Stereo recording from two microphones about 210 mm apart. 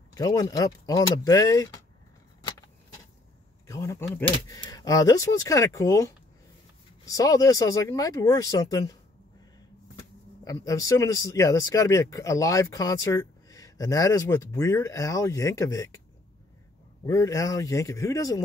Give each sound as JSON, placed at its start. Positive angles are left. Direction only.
{"t": 0.1, "sound": "speech", "side_deg": 15}
{"t": 3.6, "sound": "speech", "side_deg": 15}
{"t": 9.9, "sound": "speech", "side_deg": 15}
{"t": 17.0, "sound": "speech", "side_deg": 15}